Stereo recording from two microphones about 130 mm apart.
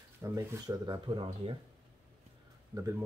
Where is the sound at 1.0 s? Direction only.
40° right (ahead or behind).